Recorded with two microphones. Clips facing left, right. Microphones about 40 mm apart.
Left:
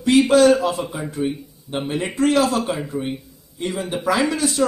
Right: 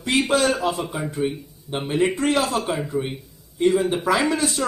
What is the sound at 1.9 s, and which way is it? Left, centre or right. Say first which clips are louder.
Speech: even; right.